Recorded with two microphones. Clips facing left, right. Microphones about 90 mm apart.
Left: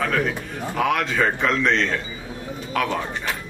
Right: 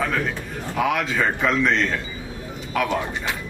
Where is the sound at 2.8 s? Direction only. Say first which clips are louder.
Right 1 dB; 15° right (ahead or behind).